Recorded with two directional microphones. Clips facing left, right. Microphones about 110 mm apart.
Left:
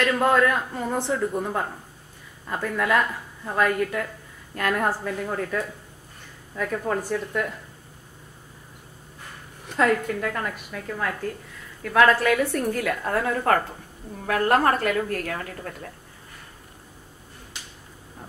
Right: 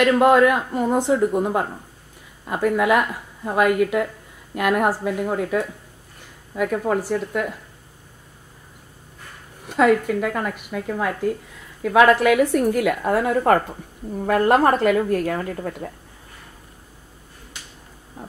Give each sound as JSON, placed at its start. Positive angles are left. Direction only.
{"t": 0.0, "sound": "a woman's voice", "side_deg": -15}
{"t": 9.7, "sound": "a woman's voice", "side_deg": -5}